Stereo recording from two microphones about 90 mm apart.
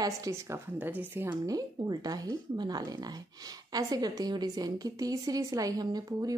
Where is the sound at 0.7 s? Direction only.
20° right (ahead or behind).